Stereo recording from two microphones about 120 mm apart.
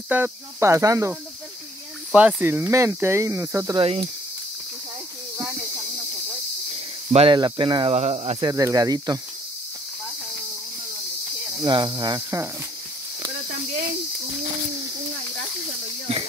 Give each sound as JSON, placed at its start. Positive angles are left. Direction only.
{"t": 0.1, "sound": "speech", "side_deg": -20}
{"t": 2.1, "sound": "speech", "side_deg": -15}
{"t": 3.7, "sound": "speech", "side_deg": -45}
{"t": 7.1, "sound": "speech", "side_deg": -55}
{"t": 7.3, "sound": "speech", "side_deg": -40}
{"t": 7.9, "sound": "speech", "side_deg": -60}
{"t": 8.4, "sound": "speech", "side_deg": -35}
{"t": 11.6, "sound": "speech", "side_deg": -40}